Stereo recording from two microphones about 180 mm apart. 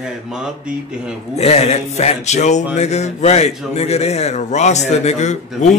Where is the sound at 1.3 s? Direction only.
35° left (ahead or behind).